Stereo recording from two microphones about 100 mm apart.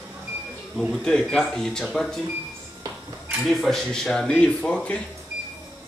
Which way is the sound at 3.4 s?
5° left (ahead or behind).